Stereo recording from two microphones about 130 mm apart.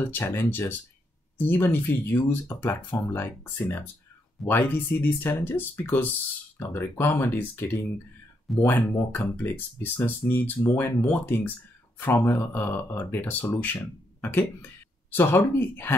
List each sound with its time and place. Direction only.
0.0 s speech: 15° left (ahead or behind)